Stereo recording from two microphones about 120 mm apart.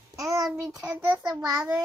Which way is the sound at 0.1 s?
25° right (ahead or behind).